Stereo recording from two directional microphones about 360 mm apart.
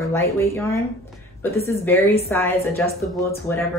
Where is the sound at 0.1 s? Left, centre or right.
Centre.